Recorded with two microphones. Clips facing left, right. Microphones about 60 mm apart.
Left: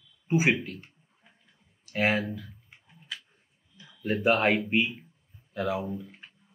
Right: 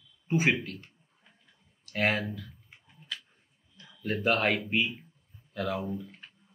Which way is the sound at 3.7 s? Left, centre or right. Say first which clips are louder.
Left 3 dB; centre.